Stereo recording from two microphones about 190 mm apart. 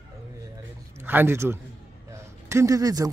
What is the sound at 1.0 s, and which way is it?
A man's voice, 10° right (ahead or behind).